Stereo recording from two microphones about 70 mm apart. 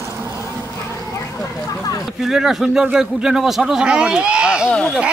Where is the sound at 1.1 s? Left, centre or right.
Left.